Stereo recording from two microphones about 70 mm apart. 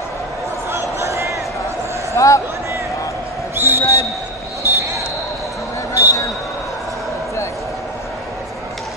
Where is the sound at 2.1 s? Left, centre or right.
Left.